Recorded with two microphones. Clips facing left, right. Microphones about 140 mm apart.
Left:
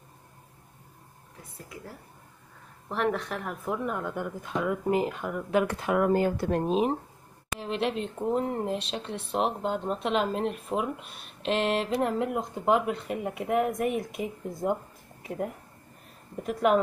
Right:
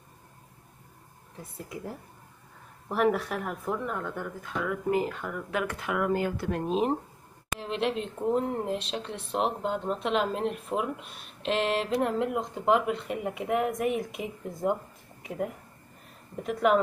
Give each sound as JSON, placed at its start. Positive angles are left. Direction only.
{"t": 2.9, "sound": "speech", "side_deg": -10}
{"t": 5.5, "sound": "speech", "side_deg": 30}
{"t": 7.6, "sound": "speech", "side_deg": 0}